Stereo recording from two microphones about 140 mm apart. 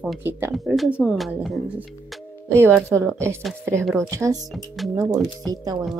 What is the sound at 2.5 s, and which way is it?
A woman's voice, 20° right (ahead or behind).